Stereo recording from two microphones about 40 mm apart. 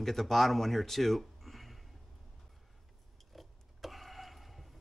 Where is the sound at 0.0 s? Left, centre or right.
Centre.